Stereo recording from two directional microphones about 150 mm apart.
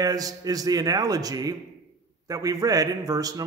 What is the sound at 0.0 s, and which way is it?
Speech, 25° right (ahead or behind).